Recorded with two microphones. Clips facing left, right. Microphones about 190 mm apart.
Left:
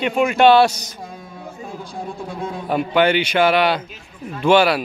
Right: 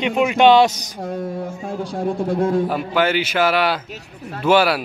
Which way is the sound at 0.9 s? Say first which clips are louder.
Right 10 dB; 65° right (ahead or behind).